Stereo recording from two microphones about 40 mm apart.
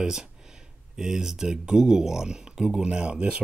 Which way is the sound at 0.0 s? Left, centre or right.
Centre.